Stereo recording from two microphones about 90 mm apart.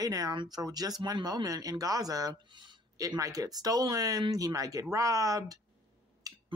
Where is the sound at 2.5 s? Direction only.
60° right (ahead or behind).